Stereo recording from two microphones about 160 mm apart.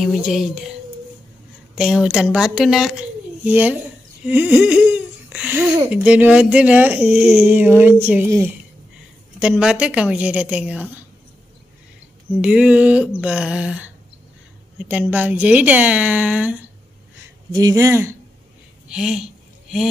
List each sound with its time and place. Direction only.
0.0 s a woman's voice: 5° right (ahead or behind)
1.8 s a woman's voice: 5° right (ahead or behind)
9.4 s speech: 5° right (ahead or behind)
12.4 s speech: 10° right (ahead or behind)
17.5 s speech: 25° right (ahead or behind)
18.9 s a sound: 5° right (ahead or behind)